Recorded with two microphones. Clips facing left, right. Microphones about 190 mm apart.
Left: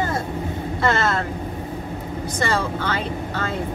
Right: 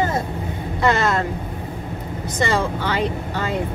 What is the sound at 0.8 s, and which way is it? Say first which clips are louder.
Speech: right 2 dB; 15° right (ahead or behind).